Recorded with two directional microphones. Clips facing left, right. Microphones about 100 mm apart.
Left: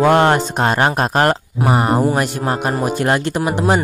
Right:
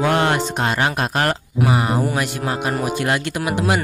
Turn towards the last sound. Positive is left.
turn(degrees=35)  # may be behind; listen again after turning